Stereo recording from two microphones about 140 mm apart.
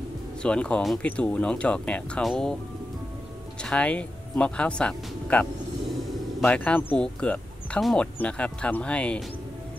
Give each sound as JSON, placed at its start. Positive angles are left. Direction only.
{"t": 0.4, "sound": "speech", "side_deg": 5}
{"t": 3.6, "sound": "speech", "side_deg": 10}